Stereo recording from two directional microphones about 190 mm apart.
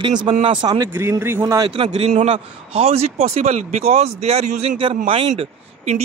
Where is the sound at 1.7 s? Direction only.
30° right (ahead or behind).